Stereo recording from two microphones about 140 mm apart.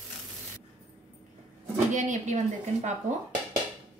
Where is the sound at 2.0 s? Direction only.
55° right (ahead or behind).